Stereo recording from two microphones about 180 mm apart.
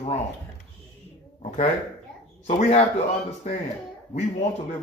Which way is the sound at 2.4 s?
40° left (ahead or behind).